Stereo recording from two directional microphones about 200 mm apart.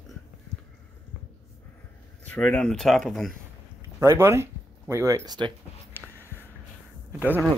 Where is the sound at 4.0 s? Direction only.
15° right (ahead or behind).